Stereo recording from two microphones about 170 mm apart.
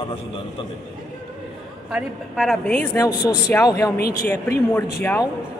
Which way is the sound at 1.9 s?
Centre (ahead or behind).